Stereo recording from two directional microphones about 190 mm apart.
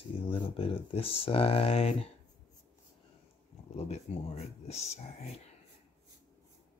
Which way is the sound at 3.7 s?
35° left (ahead or behind).